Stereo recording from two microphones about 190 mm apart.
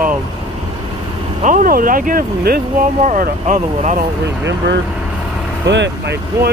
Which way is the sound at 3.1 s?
40° right (ahead or behind).